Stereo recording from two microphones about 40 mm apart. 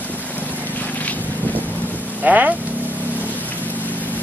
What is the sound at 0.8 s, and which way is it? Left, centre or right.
Boat, left.